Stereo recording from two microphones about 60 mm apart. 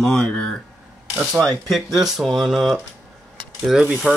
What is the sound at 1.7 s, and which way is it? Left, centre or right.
Speech, centre.